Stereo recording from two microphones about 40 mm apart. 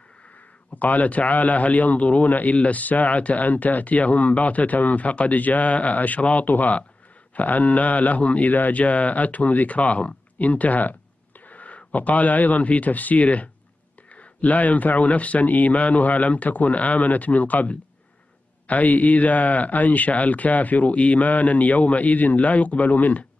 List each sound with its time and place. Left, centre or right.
0.7 s a man's voice: left
8.5 s a man's voice: left